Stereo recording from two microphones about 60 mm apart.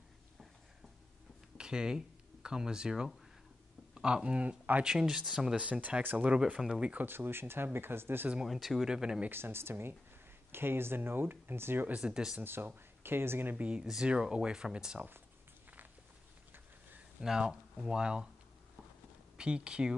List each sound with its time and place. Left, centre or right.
1.6 s speech: centre
4.8 s speech: centre
5.6 s speech: right
7.1 s speech: right
8.5 s speech: centre
9.3 s speech: right
12.0 s speech: centre
13.0 s speech: right
13.6 s speech: right
17.2 s speech: centre
19.3 s speech: centre